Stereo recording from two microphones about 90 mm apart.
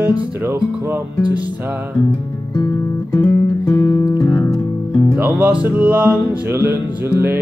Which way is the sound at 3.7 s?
30° left (ahead or behind).